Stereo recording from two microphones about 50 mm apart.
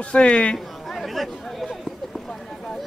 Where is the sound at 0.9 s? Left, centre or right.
Centre.